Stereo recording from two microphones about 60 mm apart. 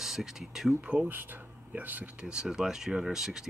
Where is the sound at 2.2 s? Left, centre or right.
Centre.